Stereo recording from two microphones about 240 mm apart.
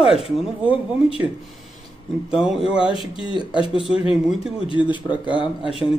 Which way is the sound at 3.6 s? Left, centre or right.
Left.